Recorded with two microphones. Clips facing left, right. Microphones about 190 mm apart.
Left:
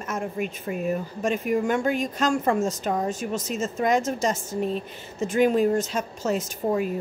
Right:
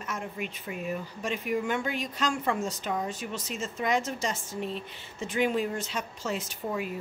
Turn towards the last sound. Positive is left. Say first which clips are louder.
# left 8 dB
turn(degrees=45)  # may be behind; listen again after turning